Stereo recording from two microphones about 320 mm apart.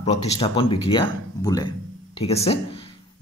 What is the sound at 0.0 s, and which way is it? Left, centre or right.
Speech, centre.